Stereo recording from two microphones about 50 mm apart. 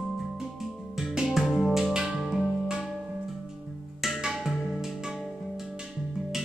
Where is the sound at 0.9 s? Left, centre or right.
Centre.